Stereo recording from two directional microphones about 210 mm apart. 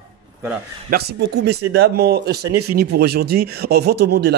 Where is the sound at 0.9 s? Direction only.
50° right (ahead or behind).